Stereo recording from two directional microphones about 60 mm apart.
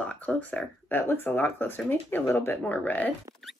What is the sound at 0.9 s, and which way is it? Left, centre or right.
Speech, left.